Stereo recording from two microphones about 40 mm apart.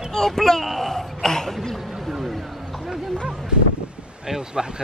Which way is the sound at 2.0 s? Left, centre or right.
Centre.